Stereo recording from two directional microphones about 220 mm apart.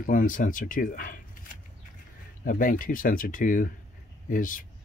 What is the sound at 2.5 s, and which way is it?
Speech, 40° left (ahead or behind).